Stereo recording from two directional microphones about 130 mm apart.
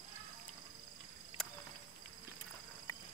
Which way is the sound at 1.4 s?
Centre (ahead or behind).